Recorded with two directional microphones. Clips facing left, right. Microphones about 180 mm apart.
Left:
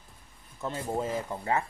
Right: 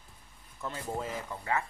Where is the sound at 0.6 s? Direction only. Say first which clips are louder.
Left 5 dB; 25° left (ahead or behind).